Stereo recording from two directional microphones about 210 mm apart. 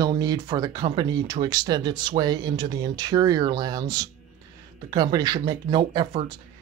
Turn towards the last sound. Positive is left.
turn(degrees=-20)  # may be behind; listen again after turning